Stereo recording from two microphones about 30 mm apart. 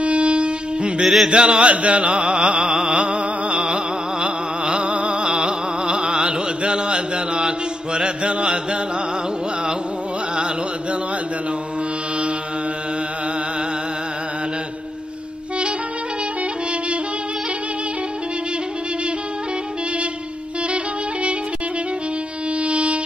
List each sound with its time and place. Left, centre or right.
0.0 s a sound: right
1.0 s music: centre
1.3 s chant: right
2.9 s a sound: right
6.1 s chant: right
10.3 s chant: right
20.7 s music: right
22.6 s music: right